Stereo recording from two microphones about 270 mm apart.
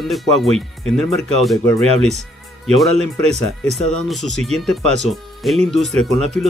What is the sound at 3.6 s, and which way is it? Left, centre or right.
Speech, centre.